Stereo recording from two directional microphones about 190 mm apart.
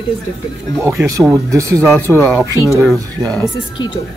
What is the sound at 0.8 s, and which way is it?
Speech, 15° right (ahead or behind).